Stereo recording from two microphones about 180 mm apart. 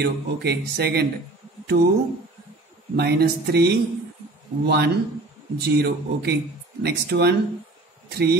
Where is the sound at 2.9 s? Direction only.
65° right (ahead or behind).